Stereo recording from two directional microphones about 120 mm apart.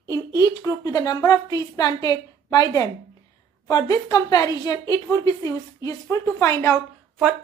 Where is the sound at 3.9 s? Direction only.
35° left (ahead or behind).